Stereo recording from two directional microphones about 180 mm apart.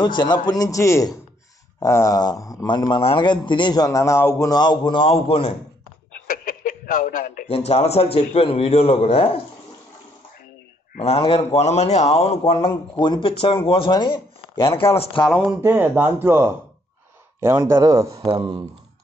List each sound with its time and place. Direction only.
0.0 s speech: 25° left (ahead or behind)
6.2 s speech: 50° left (ahead or behind)
11.0 s speech: 35° left (ahead or behind)
15.2 s speech: 5° right (ahead or behind); by 18.6 s 30° right (ahead or behind)